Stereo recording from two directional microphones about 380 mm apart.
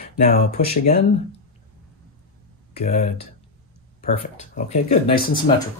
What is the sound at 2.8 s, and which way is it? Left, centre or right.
Speech, centre.